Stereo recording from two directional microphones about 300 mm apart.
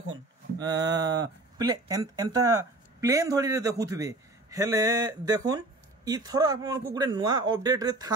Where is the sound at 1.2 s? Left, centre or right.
Centre.